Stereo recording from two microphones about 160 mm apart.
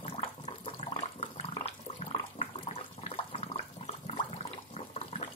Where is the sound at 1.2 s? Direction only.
35° left (ahead or behind).